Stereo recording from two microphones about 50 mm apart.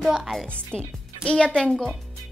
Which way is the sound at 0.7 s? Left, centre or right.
Left.